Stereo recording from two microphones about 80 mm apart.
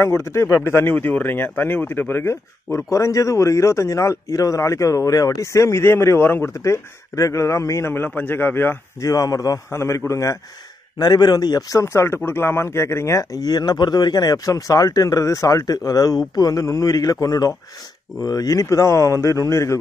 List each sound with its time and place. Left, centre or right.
0.0 s a man's voice: left
7.9 s a man's voice: left
9.0 s speech: left
9.7 s speech: left
11.0 s speech: left
11.8 s speech: left